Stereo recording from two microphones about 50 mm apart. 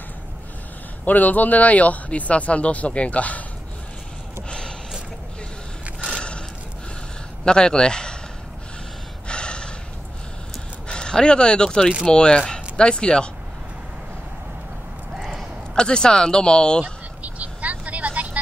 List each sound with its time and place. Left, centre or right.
1.0 s speech: left
4.5 s a sound: centre
6.0 s a sound: centre
7.4 s speech: centre
9.3 s gasp: centre
10.9 s speech: centre
15.7 s speech: centre
16.8 s vehicle: right